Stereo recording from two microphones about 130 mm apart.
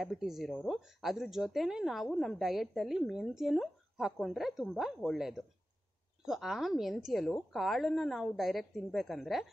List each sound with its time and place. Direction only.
0.0 s speech: centre (ahead or behind)